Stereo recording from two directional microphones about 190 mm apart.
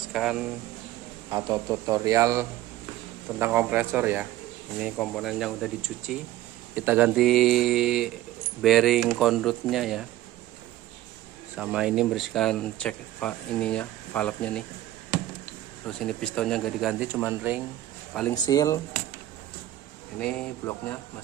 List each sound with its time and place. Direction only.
0.1 s speech: centre (ahead or behind)
1.3 s speech: 20° right (ahead or behind)
4.9 s speech: 5° left (ahead or behind)
11.5 s speech: 5° right (ahead or behind)
16.0 s speech: 5° left (ahead or behind)
18.3 s speech: 20° left (ahead or behind)
20.2 s speech: 5° left (ahead or behind)